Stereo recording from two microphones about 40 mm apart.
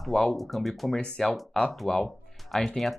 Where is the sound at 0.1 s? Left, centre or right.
Centre.